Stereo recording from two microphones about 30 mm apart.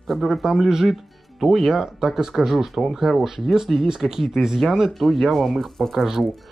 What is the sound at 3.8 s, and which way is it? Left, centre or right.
Speech, centre.